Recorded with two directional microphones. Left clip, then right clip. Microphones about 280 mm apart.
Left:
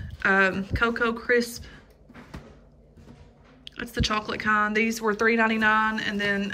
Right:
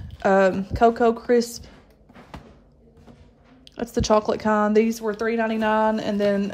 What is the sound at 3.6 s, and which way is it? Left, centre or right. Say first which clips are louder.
Speech: right 3 dB; centre.